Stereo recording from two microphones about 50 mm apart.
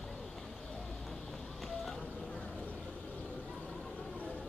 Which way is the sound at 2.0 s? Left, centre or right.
Left.